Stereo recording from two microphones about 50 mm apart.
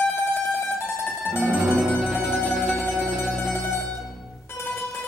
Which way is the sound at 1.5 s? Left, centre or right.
Right.